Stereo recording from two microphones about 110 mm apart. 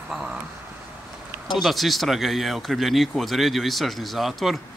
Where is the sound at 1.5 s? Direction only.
Centre (ahead or behind).